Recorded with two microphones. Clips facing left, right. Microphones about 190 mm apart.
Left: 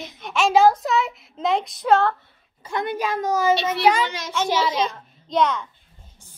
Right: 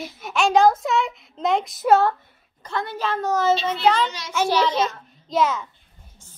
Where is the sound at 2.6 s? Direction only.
15° left (ahead or behind).